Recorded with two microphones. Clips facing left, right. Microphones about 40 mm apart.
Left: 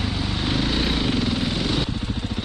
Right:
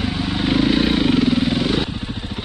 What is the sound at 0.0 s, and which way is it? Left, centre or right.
Vehicle, centre.